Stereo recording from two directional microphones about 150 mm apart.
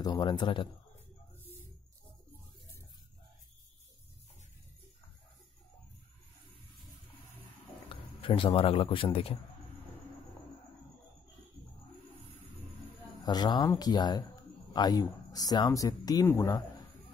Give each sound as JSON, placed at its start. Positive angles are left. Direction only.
{"t": 0.0, "sound": "a man's voice", "side_deg": 30}
{"t": 7.9, "sound": "a sound", "side_deg": 35}
{"t": 8.5, "sound": "a man's voice", "side_deg": 40}
{"t": 13.2, "sound": "speech", "side_deg": 25}